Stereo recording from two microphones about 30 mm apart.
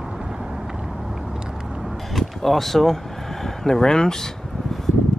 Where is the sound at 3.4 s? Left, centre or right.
Centre.